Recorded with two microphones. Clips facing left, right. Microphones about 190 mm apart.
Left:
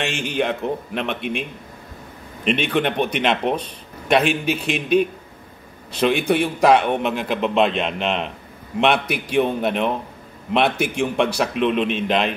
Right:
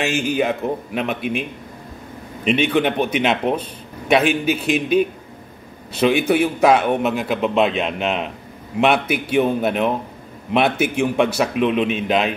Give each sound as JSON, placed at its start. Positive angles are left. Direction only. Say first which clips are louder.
{"t": 0.0, "sound": "a man's voice", "louder": "right 3 dB", "side_deg": -5}
{"t": 2.7, "sound": "a man's voice", "louder": "right 2 dB", "side_deg": -5}